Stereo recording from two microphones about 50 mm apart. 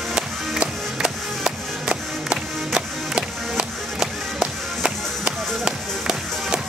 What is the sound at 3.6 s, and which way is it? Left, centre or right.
Music, centre.